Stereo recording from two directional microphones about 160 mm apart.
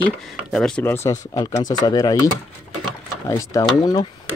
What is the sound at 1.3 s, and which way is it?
Speech, 25° left (ahead or behind).